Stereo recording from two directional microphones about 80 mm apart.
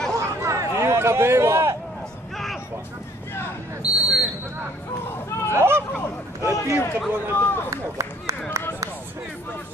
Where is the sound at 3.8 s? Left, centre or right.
Centre.